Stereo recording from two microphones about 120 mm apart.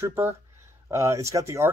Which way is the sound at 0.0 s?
20° right (ahead or behind).